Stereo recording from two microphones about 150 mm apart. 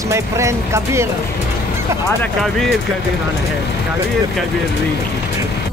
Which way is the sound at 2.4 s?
Centre (ahead or behind).